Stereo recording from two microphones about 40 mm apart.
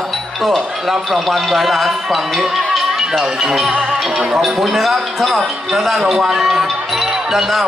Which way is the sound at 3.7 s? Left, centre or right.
Right.